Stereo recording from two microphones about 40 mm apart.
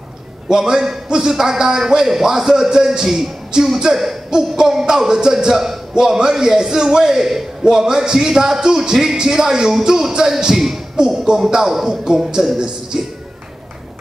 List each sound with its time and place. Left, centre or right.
0.5 s music: centre
12.5 s speech: centre